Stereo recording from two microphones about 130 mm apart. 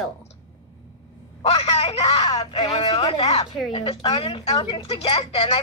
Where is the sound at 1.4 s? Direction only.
45° left (ahead or behind).